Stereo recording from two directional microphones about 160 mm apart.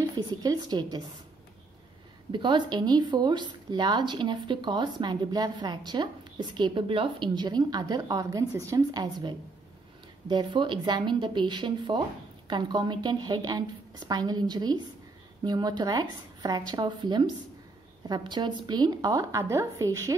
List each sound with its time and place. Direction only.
0.1 s speech: 25° right (ahead or behind)
2.3 s speech: 30° right (ahead or behind)